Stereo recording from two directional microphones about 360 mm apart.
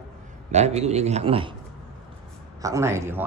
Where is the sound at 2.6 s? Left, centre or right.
Centre.